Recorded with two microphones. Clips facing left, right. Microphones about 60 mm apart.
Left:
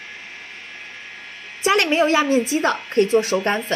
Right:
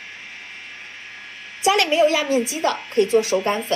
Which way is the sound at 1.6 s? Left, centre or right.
Left.